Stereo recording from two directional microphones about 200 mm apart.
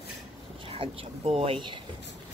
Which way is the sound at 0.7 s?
30° right (ahead or behind).